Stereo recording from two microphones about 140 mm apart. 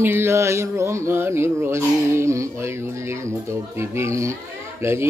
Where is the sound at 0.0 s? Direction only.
15° right (ahead or behind).